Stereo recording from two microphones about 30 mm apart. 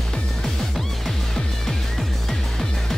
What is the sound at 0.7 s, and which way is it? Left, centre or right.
Music, centre.